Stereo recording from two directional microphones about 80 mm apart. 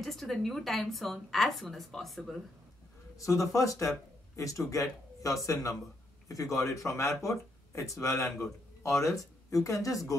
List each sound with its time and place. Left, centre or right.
0.0 s a woman's voice: centre
3.2 s speech: left